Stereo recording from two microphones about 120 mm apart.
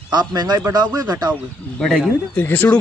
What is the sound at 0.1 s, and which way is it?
Speech, 35° right (ahead or behind).